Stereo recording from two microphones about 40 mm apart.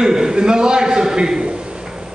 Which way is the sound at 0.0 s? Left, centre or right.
Centre.